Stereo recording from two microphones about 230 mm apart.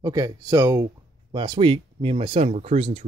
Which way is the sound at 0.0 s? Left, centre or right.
Centre.